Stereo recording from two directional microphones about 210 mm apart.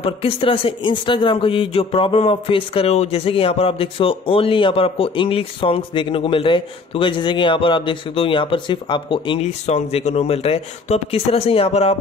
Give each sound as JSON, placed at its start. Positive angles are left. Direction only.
{"t": 0.0, "sound": "speech", "side_deg": 25}